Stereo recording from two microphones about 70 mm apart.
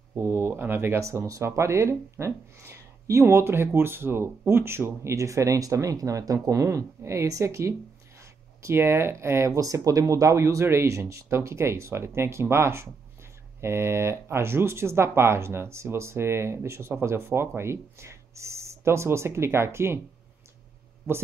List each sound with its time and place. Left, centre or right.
0.1 s speech: right
9.6 s speech: right